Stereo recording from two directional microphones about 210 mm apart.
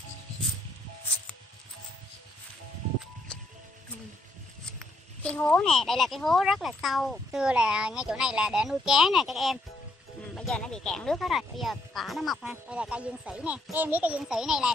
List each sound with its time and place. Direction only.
4.7 s speech: 5° left (ahead or behind)